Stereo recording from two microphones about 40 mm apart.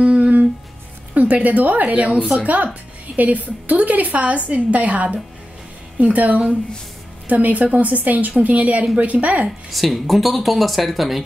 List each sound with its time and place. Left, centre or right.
0.0 s humming: right
1.1 s a woman's voice: right
9.7 s speech: centre